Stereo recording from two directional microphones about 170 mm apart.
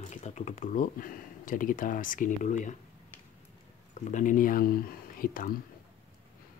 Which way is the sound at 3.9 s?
45° left (ahead or behind).